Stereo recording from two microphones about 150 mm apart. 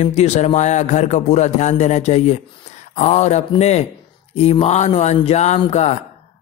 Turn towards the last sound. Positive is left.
turn(degrees=50)  # may be behind; listen again after turning